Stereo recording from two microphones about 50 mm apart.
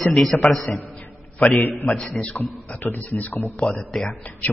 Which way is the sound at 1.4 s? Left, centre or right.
Left.